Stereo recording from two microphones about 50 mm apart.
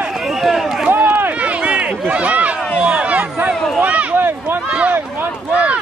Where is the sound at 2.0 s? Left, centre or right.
Right.